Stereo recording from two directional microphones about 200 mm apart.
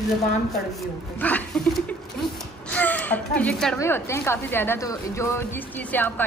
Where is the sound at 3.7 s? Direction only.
15° left (ahead or behind).